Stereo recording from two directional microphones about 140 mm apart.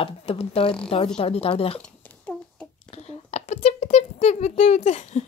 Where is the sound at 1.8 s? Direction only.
10° left (ahead or behind).